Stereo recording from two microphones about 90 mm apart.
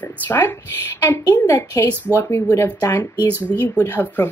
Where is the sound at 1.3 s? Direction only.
40° left (ahead or behind).